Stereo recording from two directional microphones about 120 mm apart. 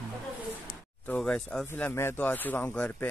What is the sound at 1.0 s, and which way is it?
Speech, 10° left (ahead or behind).